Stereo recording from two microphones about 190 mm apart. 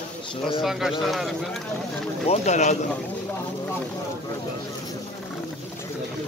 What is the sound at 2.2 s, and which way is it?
Speech, 35° left (ahead or behind).